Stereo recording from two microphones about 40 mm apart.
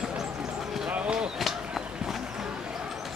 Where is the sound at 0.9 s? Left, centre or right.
Right.